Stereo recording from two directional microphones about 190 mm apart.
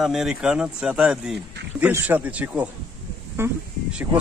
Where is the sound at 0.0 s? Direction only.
Centre (ahead or behind).